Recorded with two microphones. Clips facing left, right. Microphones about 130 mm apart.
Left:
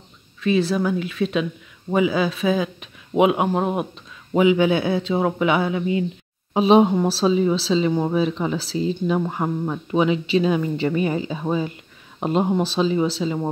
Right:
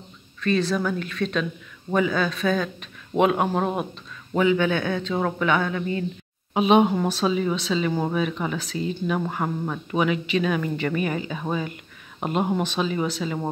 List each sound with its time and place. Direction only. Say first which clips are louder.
0.4 s speech: left 3 dB; 5° left (ahead or behind)
6.5 s speech: left 3 dB; 30° left (ahead or behind)
9.3 s speech: left 3 dB; 15° left (ahead or behind)
12.6 s speech: left 5 dB; 30° left (ahead or behind)